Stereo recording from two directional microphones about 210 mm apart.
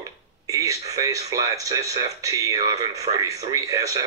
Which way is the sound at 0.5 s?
15° right (ahead or behind).